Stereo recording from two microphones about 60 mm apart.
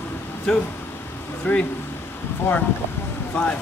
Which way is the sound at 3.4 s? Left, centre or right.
Centre.